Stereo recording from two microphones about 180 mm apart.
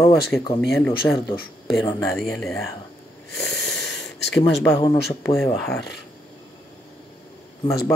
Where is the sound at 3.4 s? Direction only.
Centre (ahead or behind).